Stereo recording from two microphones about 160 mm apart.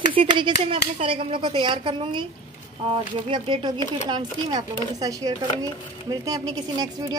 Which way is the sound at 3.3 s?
30° right (ahead or behind).